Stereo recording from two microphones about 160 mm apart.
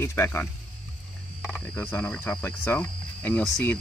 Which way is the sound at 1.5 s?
10° left (ahead or behind).